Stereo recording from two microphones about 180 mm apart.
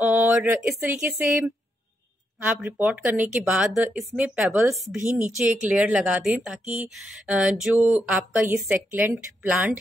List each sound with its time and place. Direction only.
0.0 s speech: 10° right (ahead or behind)
1.1 s a woman's voice: 15° right (ahead or behind)
4.6 s speech: 15° right (ahead or behind)
5.7 s a woman's voice: 5° right (ahead or behind)